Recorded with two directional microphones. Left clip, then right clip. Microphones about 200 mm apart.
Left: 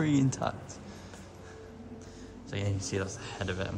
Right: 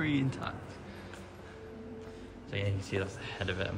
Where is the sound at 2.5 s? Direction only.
Centre (ahead or behind).